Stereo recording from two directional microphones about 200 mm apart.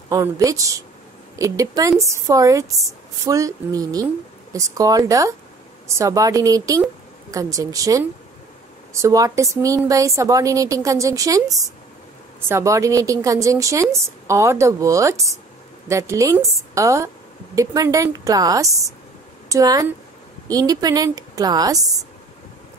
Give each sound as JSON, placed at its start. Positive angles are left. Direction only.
{"t": 0.1, "sound": "a woman's voice", "side_deg": -15}